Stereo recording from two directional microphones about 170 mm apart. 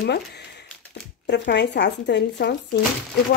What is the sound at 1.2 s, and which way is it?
Speech, 90° left.